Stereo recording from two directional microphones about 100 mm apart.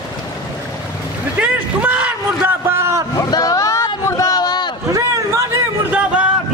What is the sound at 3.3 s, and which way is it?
Boat, 35° left (ahead or behind).